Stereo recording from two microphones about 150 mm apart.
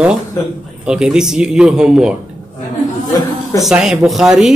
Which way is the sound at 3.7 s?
Centre (ahead or behind).